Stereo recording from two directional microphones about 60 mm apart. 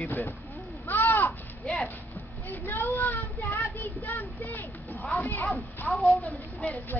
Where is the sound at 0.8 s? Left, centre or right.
Left.